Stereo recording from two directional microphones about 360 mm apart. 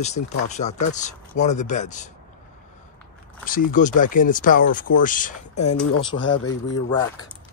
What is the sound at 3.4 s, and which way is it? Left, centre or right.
Speech, left.